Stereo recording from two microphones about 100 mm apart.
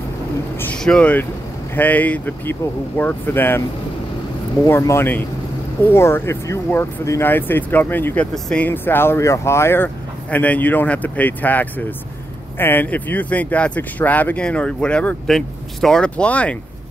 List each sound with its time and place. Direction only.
0.8 s speech: 10° left (ahead or behind)
4.6 s speech: 25° left (ahead or behind)